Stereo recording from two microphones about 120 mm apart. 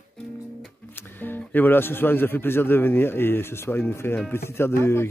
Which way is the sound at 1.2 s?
15° left (ahead or behind).